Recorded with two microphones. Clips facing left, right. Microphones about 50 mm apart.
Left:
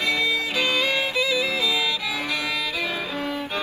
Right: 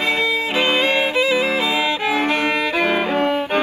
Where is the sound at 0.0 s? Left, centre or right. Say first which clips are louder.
Right 4 dB; right.